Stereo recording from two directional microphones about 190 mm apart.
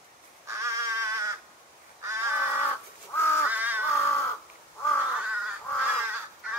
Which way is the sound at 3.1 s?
10° left (ahead or behind).